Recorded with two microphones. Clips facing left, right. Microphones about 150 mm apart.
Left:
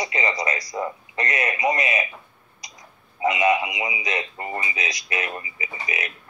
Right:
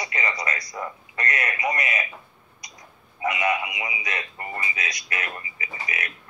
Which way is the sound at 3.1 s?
20° left (ahead or behind).